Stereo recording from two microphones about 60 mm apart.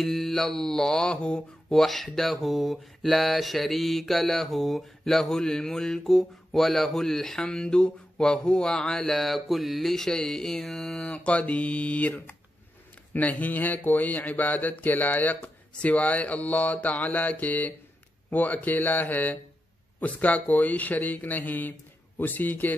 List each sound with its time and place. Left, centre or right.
0.0 s speech: centre
2.1 s mantra: centre
11.1 s speech: left
13.1 s speech: left